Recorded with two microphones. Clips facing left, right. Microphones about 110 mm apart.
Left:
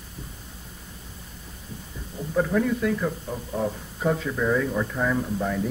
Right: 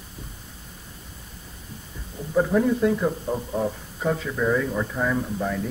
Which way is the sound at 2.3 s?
15° right (ahead or behind).